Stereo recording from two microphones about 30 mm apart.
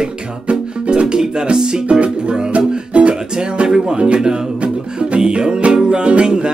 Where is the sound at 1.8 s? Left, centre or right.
Right.